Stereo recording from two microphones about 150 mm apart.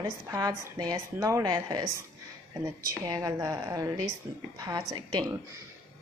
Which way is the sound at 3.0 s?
25° right (ahead or behind).